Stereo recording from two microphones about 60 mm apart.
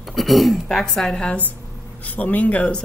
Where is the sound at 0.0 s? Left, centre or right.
Centre.